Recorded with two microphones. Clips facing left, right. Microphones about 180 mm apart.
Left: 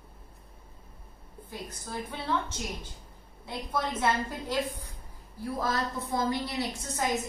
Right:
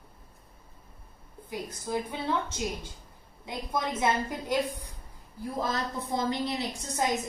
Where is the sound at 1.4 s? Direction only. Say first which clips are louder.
Right 5 dB; 15° right (ahead or behind).